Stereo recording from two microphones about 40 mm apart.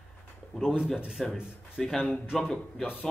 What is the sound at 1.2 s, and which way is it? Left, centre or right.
Speech, centre.